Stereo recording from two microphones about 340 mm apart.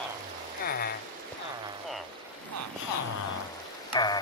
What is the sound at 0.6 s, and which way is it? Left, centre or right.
Rain on surface, left.